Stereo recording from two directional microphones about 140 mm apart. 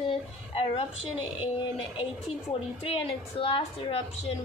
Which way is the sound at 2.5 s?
40° left (ahead or behind).